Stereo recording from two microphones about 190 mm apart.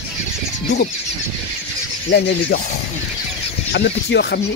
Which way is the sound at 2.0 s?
55° left (ahead or behind).